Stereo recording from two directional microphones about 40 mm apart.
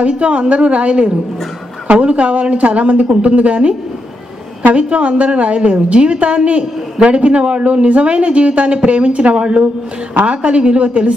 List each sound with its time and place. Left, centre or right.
0.0 s a woman's voice: right
4.7 s a woman's voice: right